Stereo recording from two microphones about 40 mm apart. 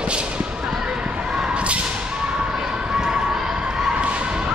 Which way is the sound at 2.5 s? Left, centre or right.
Centre.